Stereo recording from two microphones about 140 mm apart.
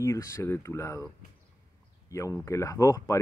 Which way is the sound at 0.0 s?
20° left (ahead or behind).